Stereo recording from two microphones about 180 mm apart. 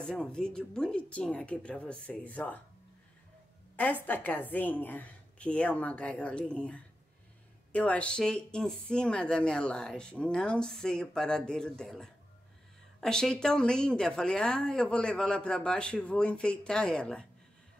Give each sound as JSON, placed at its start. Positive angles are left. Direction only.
{"t": 0.0, "sound": "a woman's voice", "side_deg": 5}
{"t": 4.0, "sound": "a woman's voice", "side_deg": 10}